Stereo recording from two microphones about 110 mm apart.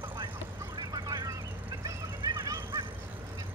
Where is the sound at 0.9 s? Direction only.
35° right (ahead or behind).